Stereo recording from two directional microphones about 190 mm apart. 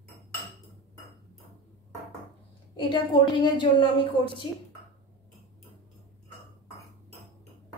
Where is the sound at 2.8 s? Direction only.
20° left (ahead or behind).